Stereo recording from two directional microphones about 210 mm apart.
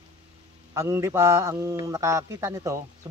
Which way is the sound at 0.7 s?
15° right (ahead or behind).